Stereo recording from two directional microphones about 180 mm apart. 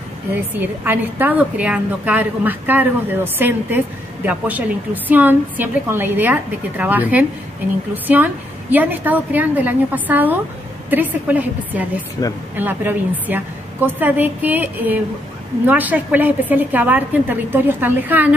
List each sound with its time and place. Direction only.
0.6 s a woman's voice: 10° right (ahead or behind)
12.2 s speech: 15° left (ahead or behind)
12.5 s a woman's voice: 10° right (ahead or behind)